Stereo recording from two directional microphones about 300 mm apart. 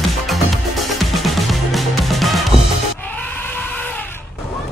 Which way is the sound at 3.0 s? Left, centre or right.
Centre.